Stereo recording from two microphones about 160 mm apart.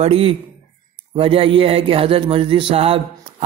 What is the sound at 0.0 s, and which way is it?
Speech, 40° right (ahead or behind).